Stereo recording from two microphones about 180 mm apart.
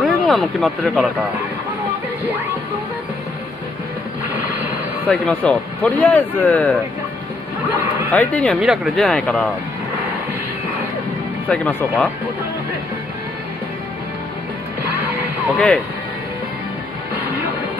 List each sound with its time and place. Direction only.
0.0 s speech: centre (ahead or behind)
5.1 s a man's voice: 5° left (ahead or behind)
8.1 s a man's voice: 10° left (ahead or behind)
8.5 s speech: 5° right (ahead or behind)
11.4 s a man's voice: 10° left (ahead or behind)
15.4 s speech: centre (ahead or behind)